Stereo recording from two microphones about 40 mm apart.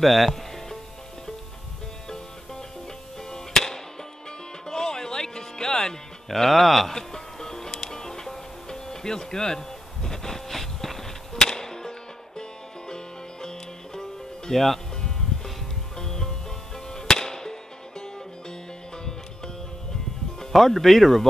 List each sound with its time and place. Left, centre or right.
0.0 s music: centre
3.2 s music: centre
20.3 s speech: centre